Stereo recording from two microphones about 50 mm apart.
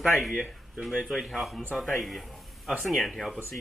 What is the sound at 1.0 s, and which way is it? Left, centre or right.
A man's voice, centre.